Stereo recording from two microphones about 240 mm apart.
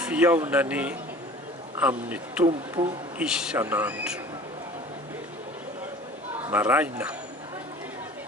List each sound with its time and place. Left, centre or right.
0.0 s speech: centre
6.4 s speech: centre